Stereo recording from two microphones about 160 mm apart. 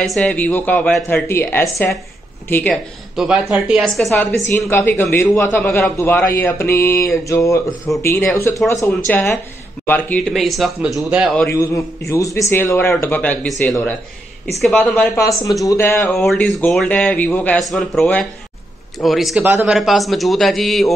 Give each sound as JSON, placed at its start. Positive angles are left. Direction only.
{"t": 0.0, "sound": "a man's voice", "side_deg": 0}
{"t": 2.7, "sound": "speech", "side_deg": -5}
{"t": 4.5, "sound": "a man's voice", "side_deg": 15}
{"t": 11.4, "sound": "a man's voice", "side_deg": 20}
{"t": 15.1, "sound": "a man's voice", "side_deg": 20}
{"t": 16.3, "sound": "a man's voice", "side_deg": 0}